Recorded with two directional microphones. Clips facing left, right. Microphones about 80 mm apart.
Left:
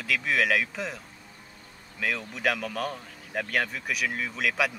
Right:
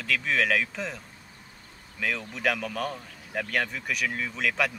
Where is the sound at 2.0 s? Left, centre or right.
Centre.